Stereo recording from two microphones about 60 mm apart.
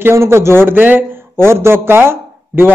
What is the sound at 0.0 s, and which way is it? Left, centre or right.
Speech, right.